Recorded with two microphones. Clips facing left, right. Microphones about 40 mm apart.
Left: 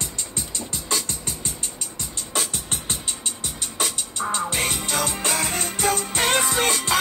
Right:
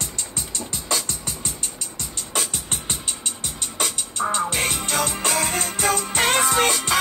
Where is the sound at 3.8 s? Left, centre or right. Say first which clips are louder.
Right 2 dB; centre.